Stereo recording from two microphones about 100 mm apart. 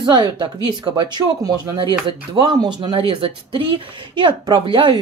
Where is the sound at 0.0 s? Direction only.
45° right (ahead or behind).